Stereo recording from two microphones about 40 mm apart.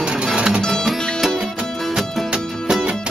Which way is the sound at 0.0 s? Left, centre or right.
Right.